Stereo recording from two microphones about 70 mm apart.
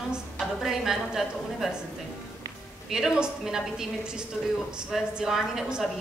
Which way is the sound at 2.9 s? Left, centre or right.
Centre.